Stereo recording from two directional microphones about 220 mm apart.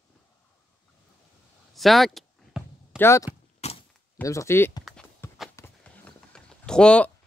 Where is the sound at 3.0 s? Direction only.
10° left (ahead or behind).